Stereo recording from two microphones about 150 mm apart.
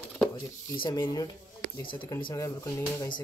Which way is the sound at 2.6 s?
20° left (ahead or behind).